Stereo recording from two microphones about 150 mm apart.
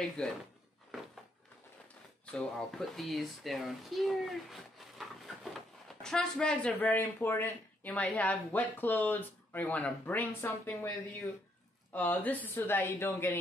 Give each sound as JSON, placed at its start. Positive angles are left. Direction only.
{"t": 0.2, "sound": "speech", "side_deg": 5}
{"t": 2.3, "sound": "speech", "side_deg": 0}
{"t": 11.9, "sound": "speech", "side_deg": 10}